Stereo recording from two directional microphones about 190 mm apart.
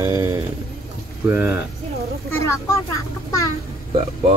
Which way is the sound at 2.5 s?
15° left (ahead or behind).